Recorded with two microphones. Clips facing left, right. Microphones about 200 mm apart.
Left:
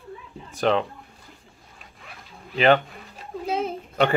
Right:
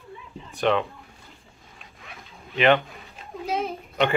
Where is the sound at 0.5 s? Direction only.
35° left (ahead or behind).